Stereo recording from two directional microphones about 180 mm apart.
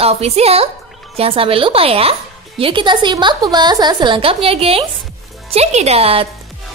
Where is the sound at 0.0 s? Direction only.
35° right (ahead or behind).